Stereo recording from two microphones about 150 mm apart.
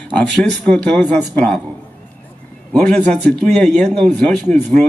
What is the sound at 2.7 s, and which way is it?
Speech, 5° left (ahead or behind).